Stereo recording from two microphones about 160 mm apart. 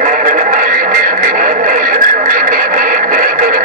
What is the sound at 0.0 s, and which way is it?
Music, 55° right (ahead or behind).